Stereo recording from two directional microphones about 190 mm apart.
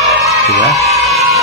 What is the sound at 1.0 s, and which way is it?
Music, centre (ahead or behind).